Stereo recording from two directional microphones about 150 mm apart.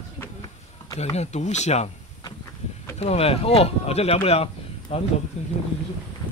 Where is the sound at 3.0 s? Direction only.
45° left (ahead or behind).